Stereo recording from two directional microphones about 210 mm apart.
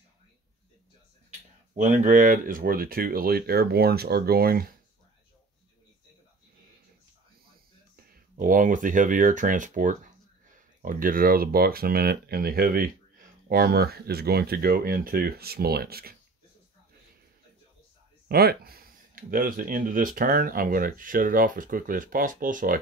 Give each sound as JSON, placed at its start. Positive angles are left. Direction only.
{"t": 1.8, "sound": "speech", "side_deg": -35}
{"t": 7.9, "sound": "speech", "side_deg": -45}
{"t": 18.3, "sound": "speech", "side_deg": -45}